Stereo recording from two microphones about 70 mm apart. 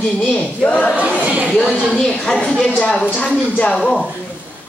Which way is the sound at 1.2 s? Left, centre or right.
Right.